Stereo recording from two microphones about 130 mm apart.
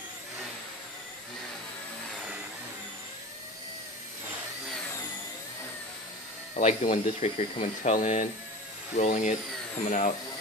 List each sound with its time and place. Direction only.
6.5 s speech: 70° left (ahead or behind)
7.2 s speech: 55° left (ahead or behind)
7.9 s speech: 80° left